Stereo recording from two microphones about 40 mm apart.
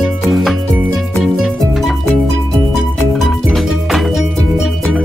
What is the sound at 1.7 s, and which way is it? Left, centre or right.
Music, centre.